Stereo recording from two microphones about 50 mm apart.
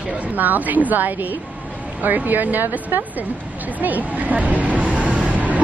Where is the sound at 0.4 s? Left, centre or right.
Right.